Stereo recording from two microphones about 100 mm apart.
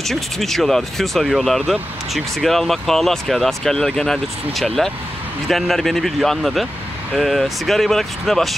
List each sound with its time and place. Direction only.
0.0 s speech: centre (ahead or behind)